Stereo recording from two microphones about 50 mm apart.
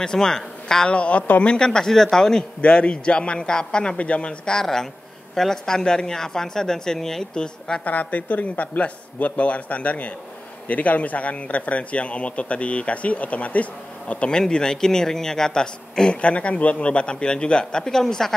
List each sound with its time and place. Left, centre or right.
0.0 s speech: centre
0.9 s speech: left
2.6 s speech: left
7.8 s a man's voice: left
14.3 s speech: centre
16.2 s speech: left